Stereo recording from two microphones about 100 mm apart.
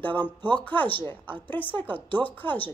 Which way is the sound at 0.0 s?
15° left (ahead or behind).